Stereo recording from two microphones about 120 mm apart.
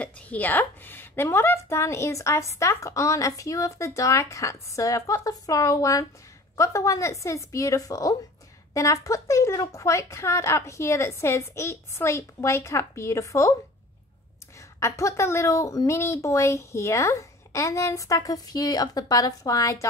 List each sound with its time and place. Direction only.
0.0 s a woman's voice: 15° left (ahead or behind)
14.8 s a woman's voice: 25° left (ahead or behind)